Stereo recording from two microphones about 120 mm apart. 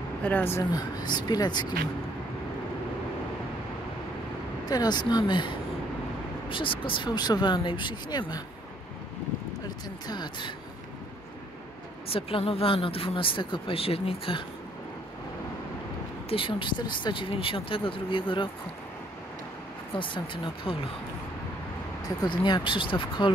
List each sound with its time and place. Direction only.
0.2 s speech: 15° left (ahead or behind)
0.7 s speech: 35° left (ahead or behind)
4.6 s speech: 35° left (ahead or behind)
10.0 s speech: 35° left (ahead or behind)
12.1 s speech: 50° left (ahead or behind)
16.3 s speech: 45° left (ahead or behind)
20.0 s speech: 45° left (ahead or behind)
22.0 s speech: 35° left (ahead or behind)